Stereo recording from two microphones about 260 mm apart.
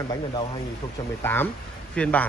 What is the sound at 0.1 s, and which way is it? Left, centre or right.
Speech, centre.